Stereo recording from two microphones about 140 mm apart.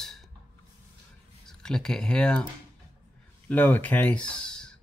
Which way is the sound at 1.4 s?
5° left (ahead or behind).